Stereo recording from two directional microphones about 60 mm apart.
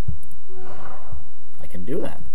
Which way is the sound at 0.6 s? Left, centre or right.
Centre.